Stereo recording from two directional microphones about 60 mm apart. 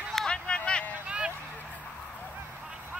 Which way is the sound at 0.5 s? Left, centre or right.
Centre.